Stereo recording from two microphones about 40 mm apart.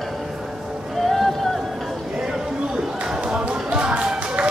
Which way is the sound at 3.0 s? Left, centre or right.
Right.